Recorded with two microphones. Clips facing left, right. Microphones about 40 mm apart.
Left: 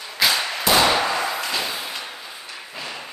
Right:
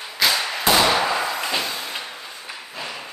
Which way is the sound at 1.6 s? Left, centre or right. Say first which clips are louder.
Even; centre.